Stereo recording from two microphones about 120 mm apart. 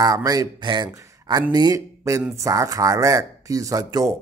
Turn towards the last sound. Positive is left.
turn(degrees=-30)  # may be behind; listen again after turning